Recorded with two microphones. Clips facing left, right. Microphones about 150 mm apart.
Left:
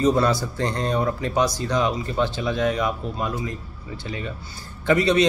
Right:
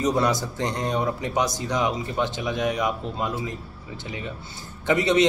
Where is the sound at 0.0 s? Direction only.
15° right (ahead or behind).